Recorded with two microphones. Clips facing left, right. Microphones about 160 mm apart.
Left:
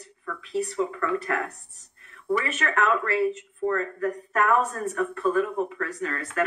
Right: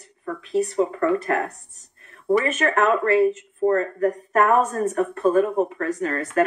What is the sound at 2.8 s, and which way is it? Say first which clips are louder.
Speech: right 5 dB; 40° right (ahead or behind).